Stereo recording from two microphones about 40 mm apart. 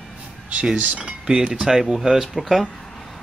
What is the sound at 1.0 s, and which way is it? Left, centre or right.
Speech, right.